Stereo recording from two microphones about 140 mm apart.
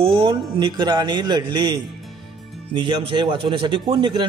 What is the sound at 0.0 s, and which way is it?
A man's voice, 35° right (ahead or behind).